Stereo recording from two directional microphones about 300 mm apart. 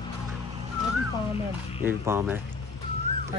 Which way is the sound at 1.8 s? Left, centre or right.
Centre.